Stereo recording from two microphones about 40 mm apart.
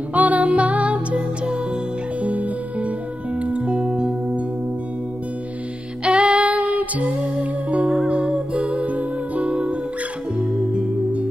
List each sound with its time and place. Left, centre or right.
0.1 s music: right
6.0 s music: right
8.1 s music: centre; by 9.5 s right
9.5 s music: right